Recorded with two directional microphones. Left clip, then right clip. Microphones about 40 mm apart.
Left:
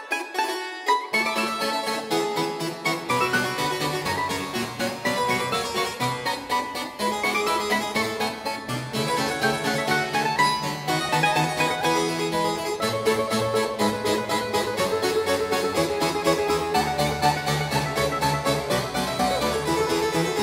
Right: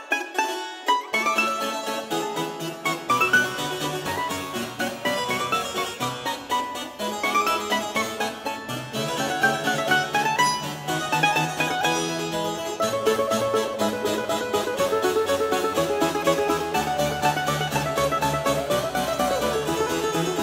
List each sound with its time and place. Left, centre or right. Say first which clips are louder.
0.1 s music: right 1 dB; centre
2.1 s harpsichord: left 5 dB; centre
5.0 s music: left 2 dB; left
9.1 s harpsichord: right 2 dB; left
10.2 s music: even; centre
12.4 s music: even; left